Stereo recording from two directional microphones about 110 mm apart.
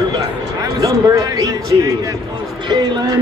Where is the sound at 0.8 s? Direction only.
35° right (ahead or behind).